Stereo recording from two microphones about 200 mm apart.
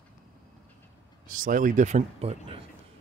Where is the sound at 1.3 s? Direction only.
40° right (ahead or behind).